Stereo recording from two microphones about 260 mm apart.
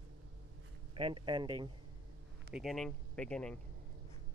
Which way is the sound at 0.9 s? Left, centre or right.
Centre.